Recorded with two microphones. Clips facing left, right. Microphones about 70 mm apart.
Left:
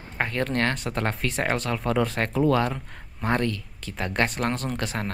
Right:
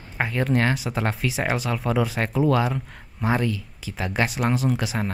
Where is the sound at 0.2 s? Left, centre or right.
Centre.